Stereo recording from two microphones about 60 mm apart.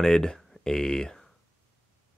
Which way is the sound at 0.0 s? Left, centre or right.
Centre.